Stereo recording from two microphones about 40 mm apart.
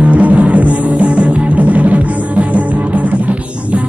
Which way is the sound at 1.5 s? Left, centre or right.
Right.